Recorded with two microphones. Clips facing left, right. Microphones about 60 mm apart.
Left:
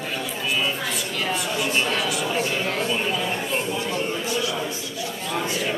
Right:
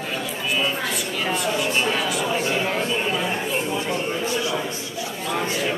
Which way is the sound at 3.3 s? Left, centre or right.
Centre.